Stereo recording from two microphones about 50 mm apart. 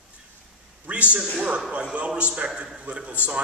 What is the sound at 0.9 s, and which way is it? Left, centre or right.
A man's voice, right.